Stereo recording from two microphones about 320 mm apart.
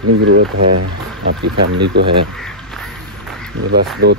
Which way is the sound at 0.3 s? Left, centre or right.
Right.